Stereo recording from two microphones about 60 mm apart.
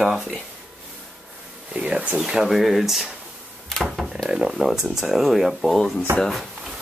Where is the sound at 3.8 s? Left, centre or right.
Centre.